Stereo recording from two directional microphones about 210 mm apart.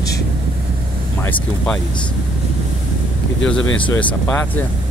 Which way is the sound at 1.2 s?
5° left (ahead or behind).